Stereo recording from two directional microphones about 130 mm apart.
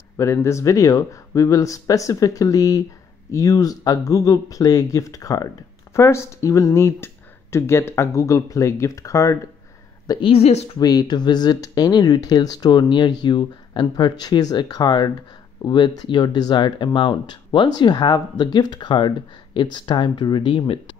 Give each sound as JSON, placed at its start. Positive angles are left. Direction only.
{"t": 0.2, "sound": "speech", "side_deg": 20}
{"t": 10.2, "sound": "speech", "side_deg": 55}
{"t": 10.8, "sound": "speech", "side_deg": 30}